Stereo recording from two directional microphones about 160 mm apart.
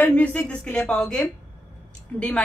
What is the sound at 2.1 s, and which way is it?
Speech, 5° left (ahead or behind).